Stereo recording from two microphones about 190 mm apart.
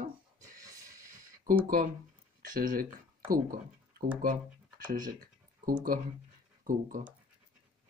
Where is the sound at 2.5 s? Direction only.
50° right (ahead or behind).